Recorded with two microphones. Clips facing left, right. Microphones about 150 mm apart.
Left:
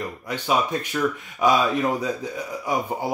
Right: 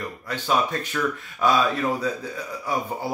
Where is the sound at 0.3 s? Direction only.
15° left (ahead or behind).